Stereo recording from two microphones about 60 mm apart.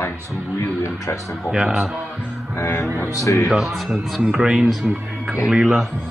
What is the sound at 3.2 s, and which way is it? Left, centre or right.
Speech, left.